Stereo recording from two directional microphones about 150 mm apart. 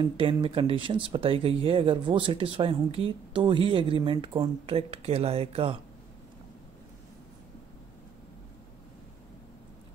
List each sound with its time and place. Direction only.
0.0 s speech: 35° right (ahead or behind)